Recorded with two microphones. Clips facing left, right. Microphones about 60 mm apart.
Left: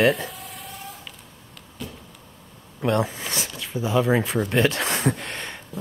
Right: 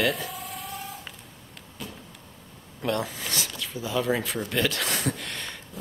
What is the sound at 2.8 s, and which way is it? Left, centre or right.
Speech, left.